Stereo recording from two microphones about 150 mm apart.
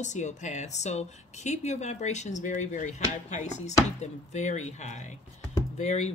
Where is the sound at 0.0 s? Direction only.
50° left (ahead or behind).